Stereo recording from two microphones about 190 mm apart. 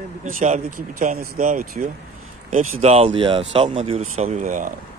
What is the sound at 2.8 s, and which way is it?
Speech, 35° right (ahead or behind).